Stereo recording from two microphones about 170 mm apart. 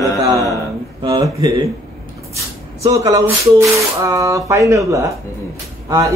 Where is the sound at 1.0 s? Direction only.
20° right (ahead or behind).